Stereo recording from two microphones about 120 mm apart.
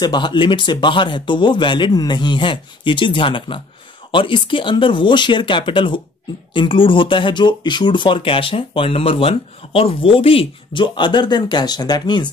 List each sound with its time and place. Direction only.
0.0 s speech: 40° left (ahead or behind)